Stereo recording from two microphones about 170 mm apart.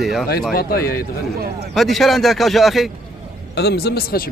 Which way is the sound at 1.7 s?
Centre (ahead or behind).